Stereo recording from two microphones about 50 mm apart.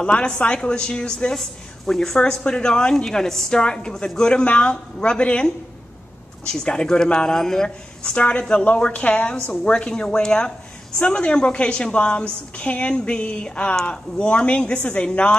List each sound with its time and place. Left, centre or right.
0.0 s a woman's voice: centre
3.1 s a woman's voice: centre